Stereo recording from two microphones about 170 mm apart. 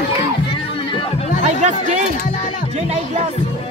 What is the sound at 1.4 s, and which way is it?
Speech, 45° right (ahead or behind).